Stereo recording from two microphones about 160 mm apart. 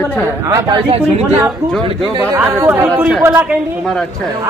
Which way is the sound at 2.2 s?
15° right (ahead or behind).